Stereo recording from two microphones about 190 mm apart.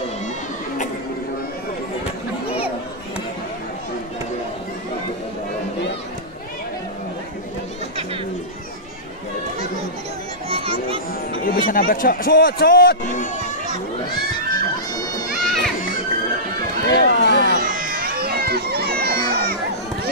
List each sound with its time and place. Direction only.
10.5 s children playing: 30° right (ahead or behind)
11.4 s a man's voice: 45° left (ahead or behind)
14.5 s music: 20° left (ahead or behind)
15.4 s children playing: centre (ahead or behind)
16.8 s run: 60° left (ahead or behind)
17.6 s a sound: 50° right (ahead or behind)